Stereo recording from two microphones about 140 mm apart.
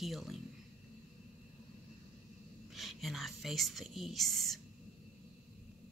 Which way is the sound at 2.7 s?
Centre (ahead or behind).